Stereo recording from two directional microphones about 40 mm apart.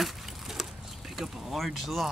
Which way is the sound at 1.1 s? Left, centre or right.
Centre.